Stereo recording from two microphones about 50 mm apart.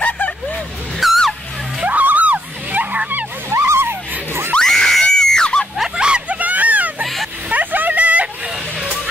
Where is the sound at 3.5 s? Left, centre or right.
Right.